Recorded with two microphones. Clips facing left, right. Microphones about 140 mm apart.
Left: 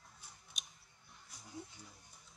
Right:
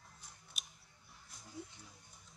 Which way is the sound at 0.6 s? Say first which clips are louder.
Even; 5° right (ahead or behind).